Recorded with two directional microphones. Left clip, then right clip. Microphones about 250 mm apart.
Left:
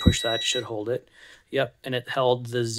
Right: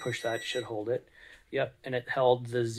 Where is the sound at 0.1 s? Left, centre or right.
Left.